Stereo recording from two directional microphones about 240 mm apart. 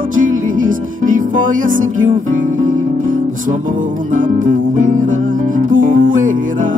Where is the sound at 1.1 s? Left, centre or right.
Right.